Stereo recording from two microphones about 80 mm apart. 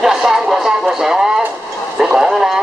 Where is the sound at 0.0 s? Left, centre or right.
Centre.